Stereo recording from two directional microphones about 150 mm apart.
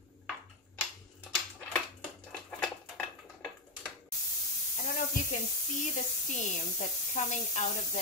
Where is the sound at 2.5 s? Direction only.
5° left (ahead or behind).